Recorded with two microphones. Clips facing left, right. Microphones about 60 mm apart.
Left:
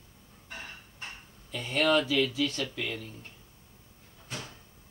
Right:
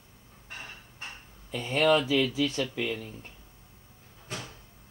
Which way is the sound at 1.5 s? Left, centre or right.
Right.